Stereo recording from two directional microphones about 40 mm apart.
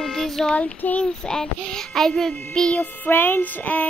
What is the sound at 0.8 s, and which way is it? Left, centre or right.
Child singing, left.